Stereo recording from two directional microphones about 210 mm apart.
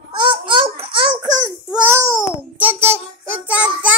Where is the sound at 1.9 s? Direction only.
10° right (ahead or behind).